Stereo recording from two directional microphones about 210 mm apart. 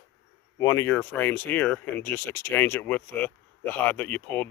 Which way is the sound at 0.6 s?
15° left (ahead or behind).